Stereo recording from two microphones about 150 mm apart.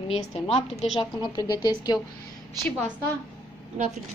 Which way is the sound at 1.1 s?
25° left (ahead or behind).